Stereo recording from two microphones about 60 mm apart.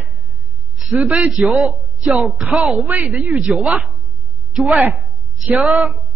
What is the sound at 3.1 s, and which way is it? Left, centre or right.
Speech, centre.